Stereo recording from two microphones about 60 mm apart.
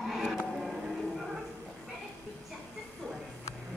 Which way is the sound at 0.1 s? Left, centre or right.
Centre.